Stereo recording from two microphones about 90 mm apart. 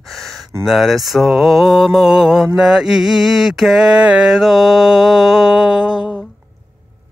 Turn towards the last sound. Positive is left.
turn(degrees=-10)  # may be behind; listen again after turning